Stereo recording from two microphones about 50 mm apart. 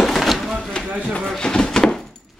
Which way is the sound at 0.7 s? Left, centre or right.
Centre.